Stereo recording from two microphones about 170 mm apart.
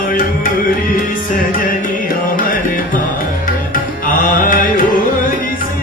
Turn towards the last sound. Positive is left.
turn(degrees=55)  # may be behind; listen again after turning